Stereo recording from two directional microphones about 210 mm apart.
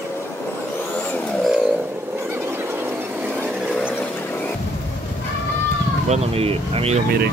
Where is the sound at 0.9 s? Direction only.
5° left (ahead or behind).